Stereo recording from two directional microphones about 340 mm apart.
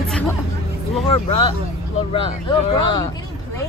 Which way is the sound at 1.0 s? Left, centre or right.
Centre.